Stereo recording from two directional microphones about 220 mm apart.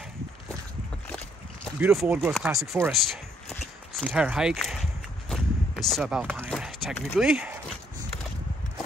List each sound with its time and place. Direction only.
1.8 s speech: 10° right (ahead or behind)
5.3 s a sound: centre (ahead or behind)
6.5 s speech: 5° left (ahead or behind)